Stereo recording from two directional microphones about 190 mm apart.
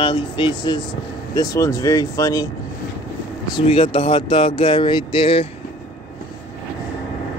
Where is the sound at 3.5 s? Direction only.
30° left (ahead or behind).